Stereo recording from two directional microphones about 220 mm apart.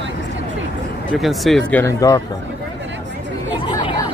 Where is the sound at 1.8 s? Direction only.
15° left (ahead or behind).